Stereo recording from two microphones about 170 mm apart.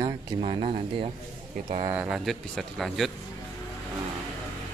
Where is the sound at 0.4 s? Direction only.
35° right (ahead or behind).